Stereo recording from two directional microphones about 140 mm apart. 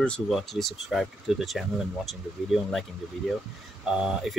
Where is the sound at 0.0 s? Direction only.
5° left (ahead or behind).